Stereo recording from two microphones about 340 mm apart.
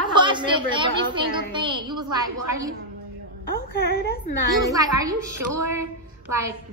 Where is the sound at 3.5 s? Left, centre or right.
Left.